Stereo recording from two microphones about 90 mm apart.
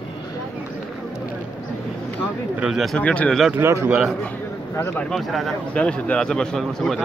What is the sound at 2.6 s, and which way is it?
Speech, 5° right (ahead or behind).